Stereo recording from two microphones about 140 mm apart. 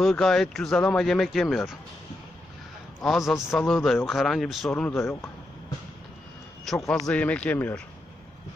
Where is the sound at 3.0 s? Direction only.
Centre (ahead or behind).